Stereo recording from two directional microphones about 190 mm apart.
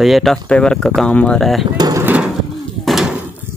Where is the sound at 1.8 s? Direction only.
15° right (ahead or behind); by 3.2 s centre (ahead or behind).